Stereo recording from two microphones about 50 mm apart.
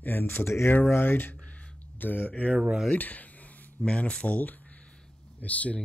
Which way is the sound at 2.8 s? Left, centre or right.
Left.